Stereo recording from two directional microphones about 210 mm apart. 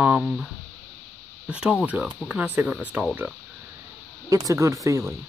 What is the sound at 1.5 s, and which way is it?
Speech, 5° right (ahead or behind).